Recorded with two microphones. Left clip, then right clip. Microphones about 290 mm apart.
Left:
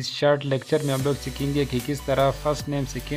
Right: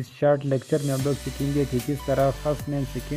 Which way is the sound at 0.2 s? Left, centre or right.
Centre.